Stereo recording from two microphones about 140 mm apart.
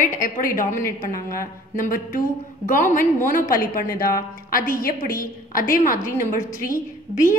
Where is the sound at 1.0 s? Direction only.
90° left.